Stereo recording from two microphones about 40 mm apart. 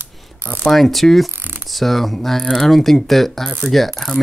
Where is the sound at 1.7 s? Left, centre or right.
Centre.